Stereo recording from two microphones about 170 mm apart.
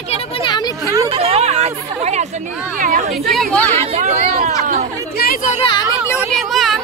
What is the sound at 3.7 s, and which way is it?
Speech, 35° right (ahead or behind).